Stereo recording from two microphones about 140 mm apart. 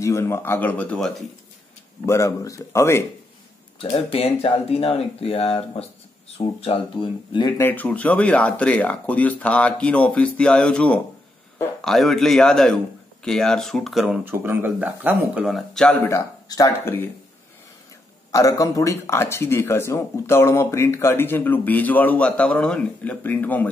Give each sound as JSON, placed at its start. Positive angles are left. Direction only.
{"t": 0.0, "sound": "speech", "side_deg": 20}
{"t": 2.0, "sound": "speech", "side_deg": 20}
{"t": 3.8, "sound": "speech", "side_deg": 40}
{"t": 7.5, "sound": "a man's voice", "side_deg": 15}
{"t": 14.2, "sound": "speech", "side_deg": -15}
{"t": 16.1, "sound": "speech", "side_deg": 25}
{"t": 18.3, "sound": "speech", "side_deg": 25}